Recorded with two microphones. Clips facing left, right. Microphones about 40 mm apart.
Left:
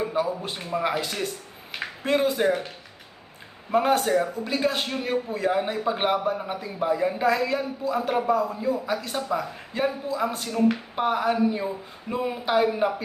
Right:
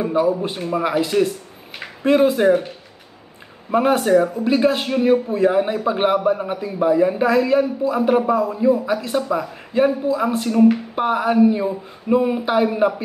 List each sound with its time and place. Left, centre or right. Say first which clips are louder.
0.0 s a man's voice: right 8 dB; centre
3.7 s a man's voice: right 6 dB; centre